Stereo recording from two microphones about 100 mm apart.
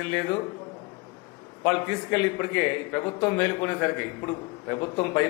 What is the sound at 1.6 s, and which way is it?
A man's voice, 25° left (ahead or behind).